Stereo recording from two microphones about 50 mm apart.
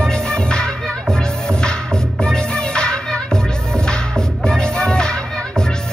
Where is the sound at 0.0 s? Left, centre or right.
Centre.